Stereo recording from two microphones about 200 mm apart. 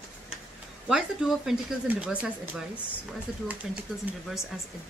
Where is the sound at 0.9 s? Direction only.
Centre (ahead or behind).